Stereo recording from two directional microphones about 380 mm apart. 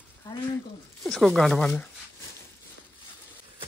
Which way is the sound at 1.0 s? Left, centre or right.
Centre.